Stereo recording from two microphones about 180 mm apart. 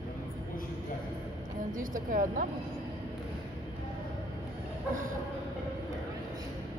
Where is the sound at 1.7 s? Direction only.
50° right (ahead or behind).